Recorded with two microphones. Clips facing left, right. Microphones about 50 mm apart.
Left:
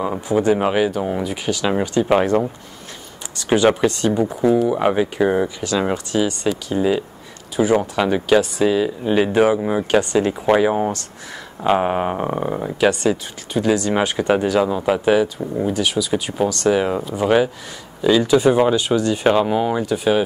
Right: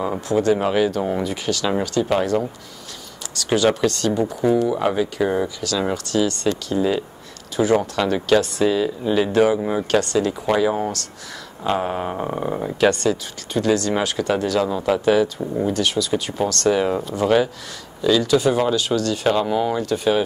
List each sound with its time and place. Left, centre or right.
0.3 s speech: centre
12.3 s speech: centre